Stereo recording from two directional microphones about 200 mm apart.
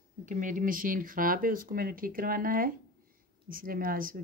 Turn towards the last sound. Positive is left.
turn(degrees=-45)  # may be behind; listen again after turning